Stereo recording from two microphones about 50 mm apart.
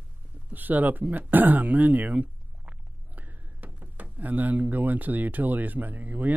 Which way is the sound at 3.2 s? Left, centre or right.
Right.